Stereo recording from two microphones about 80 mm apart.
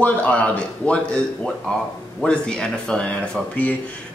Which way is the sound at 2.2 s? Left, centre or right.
Centre.